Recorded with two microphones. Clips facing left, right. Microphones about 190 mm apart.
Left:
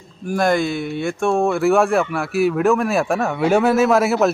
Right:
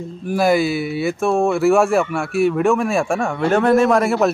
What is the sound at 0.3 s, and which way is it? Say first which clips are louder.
Speech: right 2 dB; 5° right (ahead or behind).